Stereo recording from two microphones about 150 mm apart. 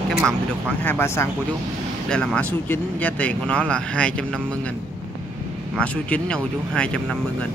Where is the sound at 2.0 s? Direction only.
5° left (ahead or behind).